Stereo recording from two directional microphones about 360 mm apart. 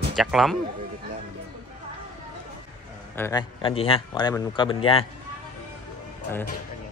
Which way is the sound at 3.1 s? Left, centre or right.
Centre.